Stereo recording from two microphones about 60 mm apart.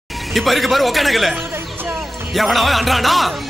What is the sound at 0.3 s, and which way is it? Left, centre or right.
A man's voice, centre.